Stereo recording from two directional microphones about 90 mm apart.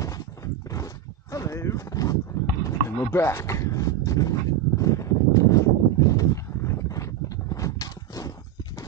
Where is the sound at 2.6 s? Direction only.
30° left (ahead or behind).